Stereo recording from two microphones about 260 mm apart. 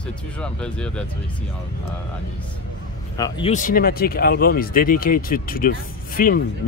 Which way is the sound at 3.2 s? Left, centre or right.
Left.